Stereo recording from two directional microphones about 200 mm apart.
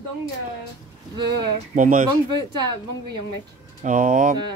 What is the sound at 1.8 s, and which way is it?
Speech, 40° right (ahead or behind).